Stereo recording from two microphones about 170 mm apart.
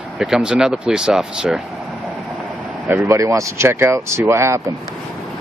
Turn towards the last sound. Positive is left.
turn(degrees=-15)  # may be behind; listen again after turning